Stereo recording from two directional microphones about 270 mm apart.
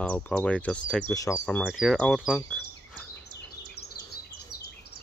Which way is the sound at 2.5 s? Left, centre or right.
Centre.